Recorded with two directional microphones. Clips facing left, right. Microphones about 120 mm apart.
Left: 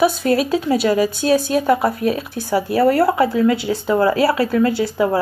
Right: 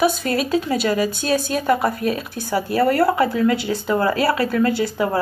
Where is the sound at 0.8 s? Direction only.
15° left (ahead or behind).